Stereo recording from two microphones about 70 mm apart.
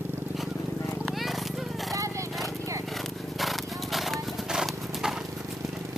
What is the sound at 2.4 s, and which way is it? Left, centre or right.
Horse, right.